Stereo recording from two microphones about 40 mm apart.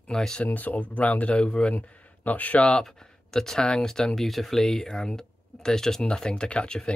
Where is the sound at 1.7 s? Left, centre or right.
Left.